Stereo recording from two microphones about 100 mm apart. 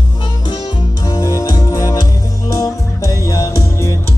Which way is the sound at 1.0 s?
40° left (ahead or behind).